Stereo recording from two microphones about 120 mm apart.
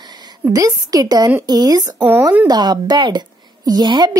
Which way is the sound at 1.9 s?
15° right (ahead or behind).